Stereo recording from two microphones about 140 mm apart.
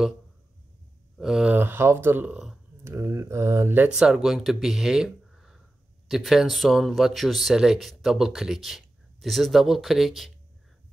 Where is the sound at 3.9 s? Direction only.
5° right (ahead or behind).